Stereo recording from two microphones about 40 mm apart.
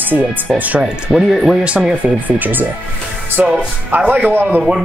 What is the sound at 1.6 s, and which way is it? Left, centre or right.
Speech, right.